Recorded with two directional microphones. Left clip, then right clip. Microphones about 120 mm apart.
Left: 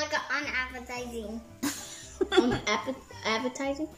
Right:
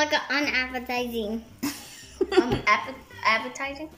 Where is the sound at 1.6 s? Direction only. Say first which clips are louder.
Right 1 dB; 10° right (ahead or behind).